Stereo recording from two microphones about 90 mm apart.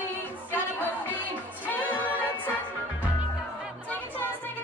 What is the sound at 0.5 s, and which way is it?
Music, 20° left (ahead or behind).